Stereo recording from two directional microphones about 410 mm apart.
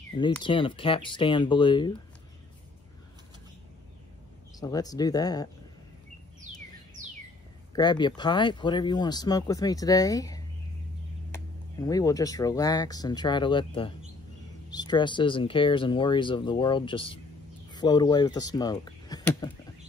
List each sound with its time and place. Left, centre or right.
0.1 s speech: centre
4.6 s speech: centre
7.0 s bird: centre
7.7 s speech: centre
14.7 s speech: centre